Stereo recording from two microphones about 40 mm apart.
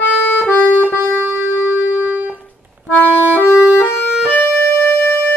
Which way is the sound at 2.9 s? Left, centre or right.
Left.